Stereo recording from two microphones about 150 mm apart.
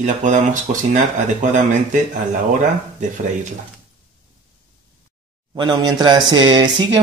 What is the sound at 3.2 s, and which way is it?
Speech, 55° right (ahead or behind).